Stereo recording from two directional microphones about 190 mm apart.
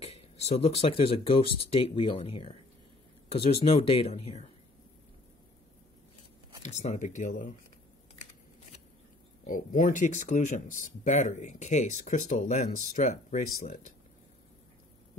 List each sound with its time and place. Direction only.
0.5 s speech: 30° left (ahead or behind)
6.6 s speech: 40° left (ahead or behind)
9.5 s speech: 45° left (ahead or behind)